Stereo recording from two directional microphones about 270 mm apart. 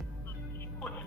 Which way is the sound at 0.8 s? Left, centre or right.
Centre.